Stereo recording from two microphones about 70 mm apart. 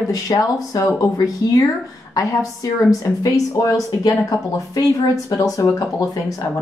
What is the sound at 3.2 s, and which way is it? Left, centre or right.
Speech, left.